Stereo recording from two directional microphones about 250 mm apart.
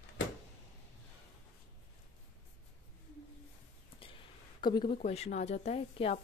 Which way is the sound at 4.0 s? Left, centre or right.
Centre.